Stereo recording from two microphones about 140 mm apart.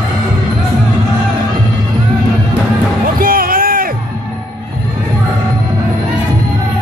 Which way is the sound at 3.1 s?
90° right.